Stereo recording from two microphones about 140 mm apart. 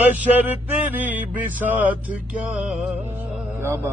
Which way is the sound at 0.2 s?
10° right (ahead or behind).